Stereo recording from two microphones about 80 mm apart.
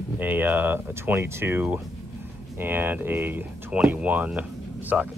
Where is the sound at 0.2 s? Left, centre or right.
Right.